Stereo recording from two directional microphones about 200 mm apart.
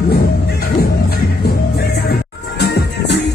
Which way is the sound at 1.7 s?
50° left (ahead or behind).